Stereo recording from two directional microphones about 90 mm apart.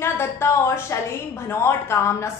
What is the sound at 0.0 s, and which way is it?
A woman's voice, 30° left (ahead or behind).